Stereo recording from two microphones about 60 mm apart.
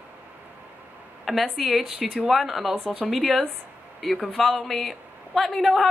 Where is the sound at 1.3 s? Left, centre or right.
Centre.